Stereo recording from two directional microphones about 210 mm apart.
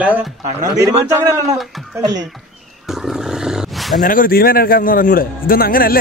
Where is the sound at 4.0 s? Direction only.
40° left (ahead or behind).